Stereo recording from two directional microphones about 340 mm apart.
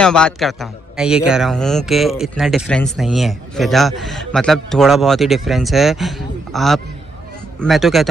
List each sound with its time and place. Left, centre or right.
0.0 s a man's voice: centre